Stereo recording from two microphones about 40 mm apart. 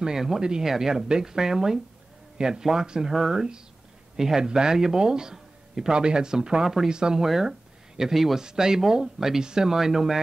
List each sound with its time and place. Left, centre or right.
0.0 s a man's voice: centre
7.4 s a sound: centre
8.1 s speech: centre
8.4 s a man's voice: centre